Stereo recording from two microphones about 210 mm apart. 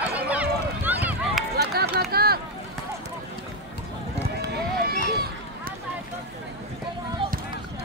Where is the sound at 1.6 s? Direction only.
50° right (ahead or behind).